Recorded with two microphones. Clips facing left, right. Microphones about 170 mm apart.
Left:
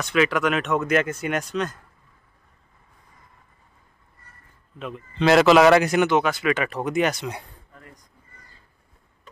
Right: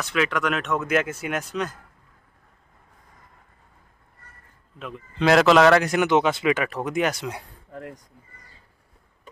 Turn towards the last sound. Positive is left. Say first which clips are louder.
# right 11 dB
turn(degrees=-70)  # may be behind; listen again after turning